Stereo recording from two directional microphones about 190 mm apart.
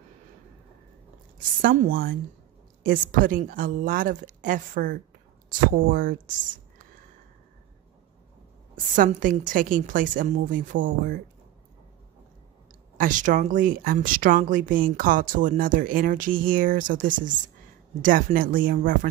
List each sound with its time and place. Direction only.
1.6 s speech: 50° right (ahead or behind)
8.9 s speech: 45° right (ahead or behind)
12.9 s speech: 45° right (ahead or behind)